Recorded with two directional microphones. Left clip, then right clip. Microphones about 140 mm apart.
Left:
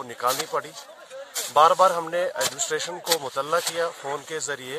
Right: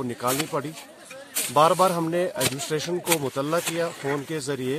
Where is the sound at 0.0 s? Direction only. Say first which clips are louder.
Left 1 dB; 20° left (ahead or behind).